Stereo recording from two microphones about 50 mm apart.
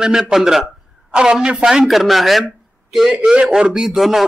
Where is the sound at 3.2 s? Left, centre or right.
Right; by 4.2 s centre.